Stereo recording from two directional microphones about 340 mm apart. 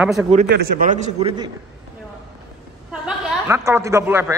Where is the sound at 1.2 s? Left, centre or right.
Centre.